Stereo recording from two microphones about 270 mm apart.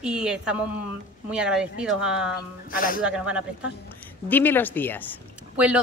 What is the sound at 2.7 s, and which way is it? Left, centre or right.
Speech, left.